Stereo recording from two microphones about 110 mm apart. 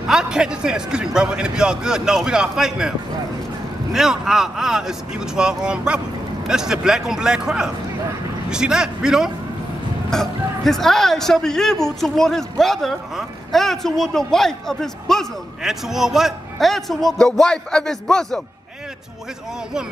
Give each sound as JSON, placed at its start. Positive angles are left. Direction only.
{"t": 0.1, "sound": "a man's voice", "side_deg": -5}
{"t": 3.9, "sound": "a man's voice", "side_deg": -5}